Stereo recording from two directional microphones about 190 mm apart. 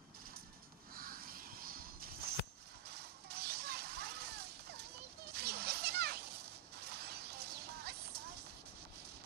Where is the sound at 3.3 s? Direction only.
55° right (ahead or behind).